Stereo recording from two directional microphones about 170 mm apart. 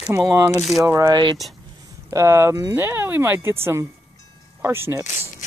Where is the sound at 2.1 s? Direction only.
15° right (ahead or behind).